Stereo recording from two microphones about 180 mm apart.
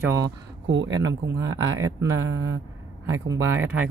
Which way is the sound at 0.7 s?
90° right.